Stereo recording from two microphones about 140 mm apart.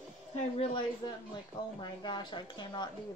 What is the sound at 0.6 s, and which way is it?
Speech, 35° left (ahead or behind).